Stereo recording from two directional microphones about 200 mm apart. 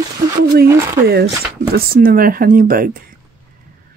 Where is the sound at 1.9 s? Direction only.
45° right (ahead or behind).